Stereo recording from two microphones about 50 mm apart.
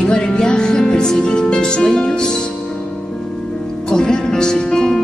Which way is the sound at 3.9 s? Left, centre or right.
Centre.